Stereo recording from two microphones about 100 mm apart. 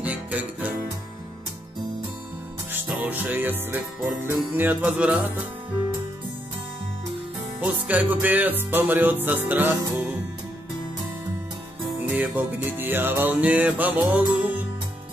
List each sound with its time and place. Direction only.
0.0 s music: 15° right (ahead or behind)
3.0 s music: 15° right (ahead or behind)
7.6 s music: 15° right (ahead or behind)
12.1 s music: 15° right (ahead or behind)